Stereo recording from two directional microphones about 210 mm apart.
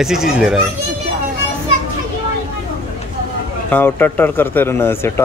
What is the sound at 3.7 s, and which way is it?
Speech, 10° left (ahead or behind).